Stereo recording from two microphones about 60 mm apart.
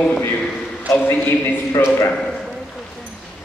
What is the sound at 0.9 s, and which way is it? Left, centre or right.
Speech, left.